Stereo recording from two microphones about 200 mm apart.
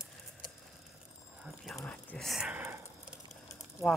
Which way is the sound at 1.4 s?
Centre (ahead or behind).